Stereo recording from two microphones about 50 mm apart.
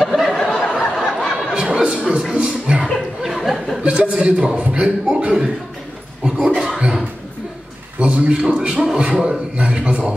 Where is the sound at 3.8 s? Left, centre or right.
Right.